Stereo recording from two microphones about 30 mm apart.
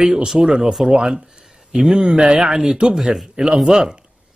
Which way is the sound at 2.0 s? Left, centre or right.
Right.